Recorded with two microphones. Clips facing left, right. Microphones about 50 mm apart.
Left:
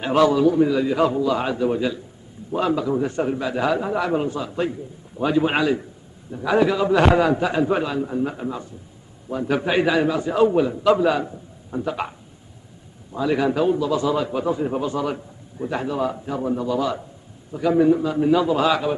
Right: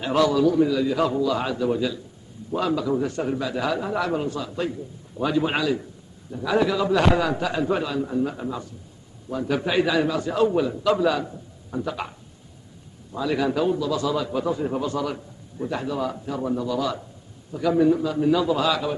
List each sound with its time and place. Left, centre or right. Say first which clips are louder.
0.0 s a man's voice: left 3 dB; left
5.6 s a man's voice: left 3 dB; left
6.3 s a man's voice: left 3 dB; centre
11.2 s a man's voice: left 2 dB; centre
16.1 s a man's voice: left 2 dB; centre